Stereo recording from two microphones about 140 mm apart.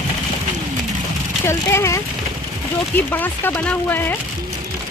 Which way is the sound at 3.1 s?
10° left (ahead or behind).